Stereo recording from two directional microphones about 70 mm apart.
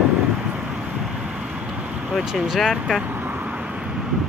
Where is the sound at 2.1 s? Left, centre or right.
Centre.